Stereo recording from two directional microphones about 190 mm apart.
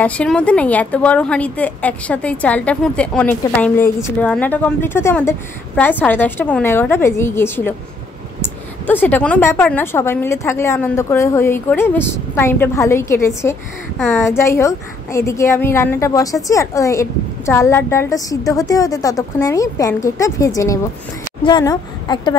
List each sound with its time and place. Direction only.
0.0 s a woman's voice: 5° left (ahead or behind)